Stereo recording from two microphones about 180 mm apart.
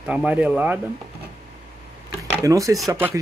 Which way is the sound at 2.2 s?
15° right (ahead or behind).